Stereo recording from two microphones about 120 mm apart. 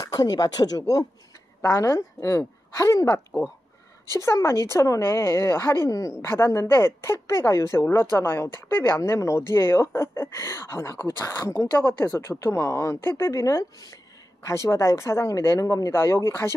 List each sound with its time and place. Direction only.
0.0 s a woman's voice: 30° left (ahead or behind)